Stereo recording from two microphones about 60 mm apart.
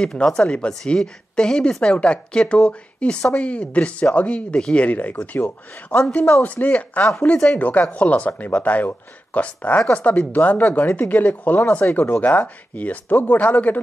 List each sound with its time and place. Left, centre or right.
0.0 s speech: centre